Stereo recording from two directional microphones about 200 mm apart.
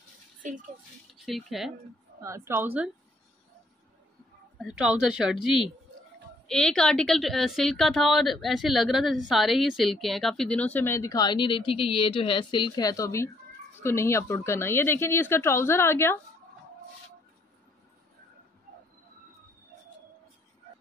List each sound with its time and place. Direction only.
1.1 s speech: centre (ahead or behind)
2.2 s a woman's voice: 10° right (ahead or behind)
4.6 s a woman's voice: 5° right (ahead or behind); by 16.2 s 10° left (ahead or behind)